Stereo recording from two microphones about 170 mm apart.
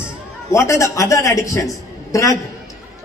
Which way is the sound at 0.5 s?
15° left (ahead or behind).